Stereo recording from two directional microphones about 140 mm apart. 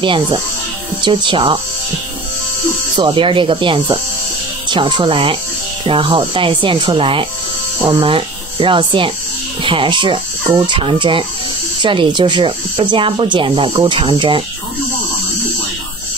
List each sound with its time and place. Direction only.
0.0 s speech: 35° right (ahead or behind)
3.0 s speech: 35° right (ahead or behind)